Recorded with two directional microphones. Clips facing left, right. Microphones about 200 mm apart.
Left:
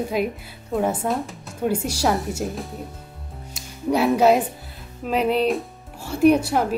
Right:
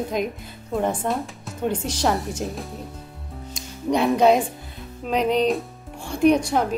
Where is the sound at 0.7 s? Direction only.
5° left (ahead or behind).